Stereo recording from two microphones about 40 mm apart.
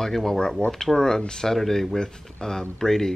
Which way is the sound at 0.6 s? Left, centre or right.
Left.